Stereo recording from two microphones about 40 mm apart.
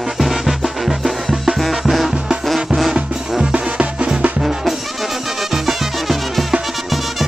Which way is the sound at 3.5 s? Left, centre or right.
Right.